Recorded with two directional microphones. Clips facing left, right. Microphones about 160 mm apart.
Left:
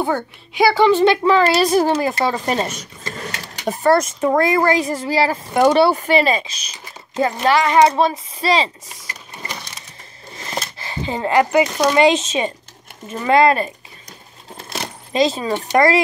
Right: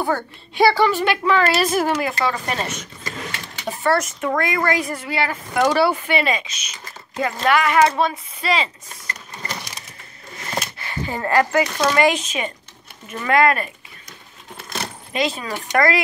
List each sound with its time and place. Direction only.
0.0 s a woman's voice: 15° left (ahead or behind)
3.3 s speech: 45° left (ahead or behind); by 5.9 s 25° left (ahead or behind)
5.9 s a woman's voice: 35° left (ahead or behind)
10.3 s a woman's voice: 30° left (ahead or behind)
14.6 s a sound: 35° left (ahead or behind)